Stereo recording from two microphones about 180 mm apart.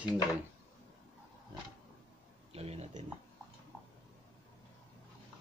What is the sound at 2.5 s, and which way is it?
Speech, 35° right (ahead or behind).